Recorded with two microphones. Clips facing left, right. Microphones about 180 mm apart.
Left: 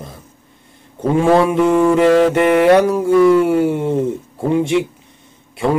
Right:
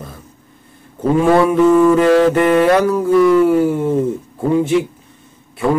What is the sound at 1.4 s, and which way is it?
Music, 20° left (ahead or behind).